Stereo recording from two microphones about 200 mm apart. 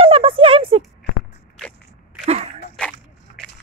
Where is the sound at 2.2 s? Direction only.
30° right (ahead or behind).